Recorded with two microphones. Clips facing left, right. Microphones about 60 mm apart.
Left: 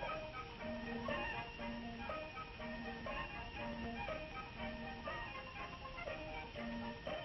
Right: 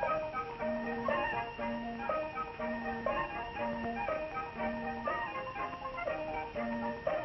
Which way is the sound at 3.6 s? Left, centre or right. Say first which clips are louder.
Right 9 dB; right.